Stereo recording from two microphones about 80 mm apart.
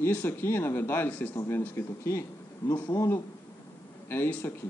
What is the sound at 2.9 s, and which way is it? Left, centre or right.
Speech, left.